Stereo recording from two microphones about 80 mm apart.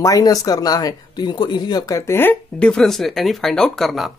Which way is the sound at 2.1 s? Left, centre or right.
Left.